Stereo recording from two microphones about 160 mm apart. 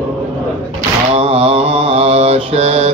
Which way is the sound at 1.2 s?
35° right (ahead or behind).